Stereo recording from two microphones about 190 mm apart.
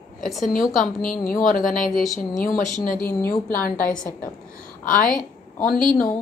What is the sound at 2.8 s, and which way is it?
Speech, 50° left (ahead or behind).